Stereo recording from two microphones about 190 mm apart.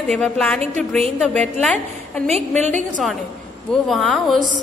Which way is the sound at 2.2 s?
35° right (ahead or behind).